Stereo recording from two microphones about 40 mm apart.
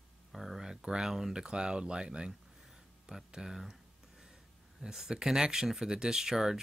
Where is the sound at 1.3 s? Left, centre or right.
Right.